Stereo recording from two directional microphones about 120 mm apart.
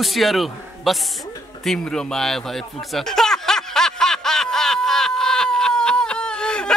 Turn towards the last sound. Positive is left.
turn(degrees=5)  # may be behind; listen again after turning